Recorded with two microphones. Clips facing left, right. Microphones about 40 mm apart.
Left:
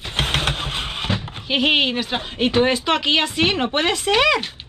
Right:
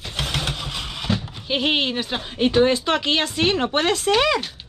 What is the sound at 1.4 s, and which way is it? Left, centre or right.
Speech, left.